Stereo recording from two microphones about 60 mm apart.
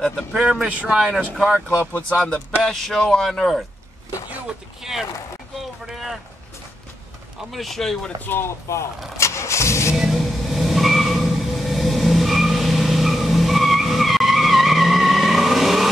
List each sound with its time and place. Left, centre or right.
0.3 s speech: right
1.4 s speech: centre
1.8 s speech: left
2.1 s speech: centre
5.9 s boat: centre
7.3 s speech: centre
8.3 s vehicle: left
9.9 s vehicle: centre